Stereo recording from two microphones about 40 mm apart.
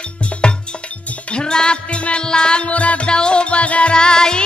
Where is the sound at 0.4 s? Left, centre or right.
Left.